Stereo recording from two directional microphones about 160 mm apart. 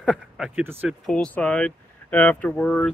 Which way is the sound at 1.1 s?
5° left (ahead or behind).